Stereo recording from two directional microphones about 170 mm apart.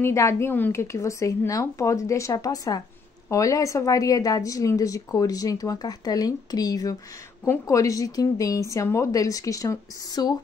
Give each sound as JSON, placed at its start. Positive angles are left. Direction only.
{"t": 0.0, "sound": "a woman's voice", "side_deg": 15}